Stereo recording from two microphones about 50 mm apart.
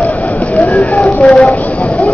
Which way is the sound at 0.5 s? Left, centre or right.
Left.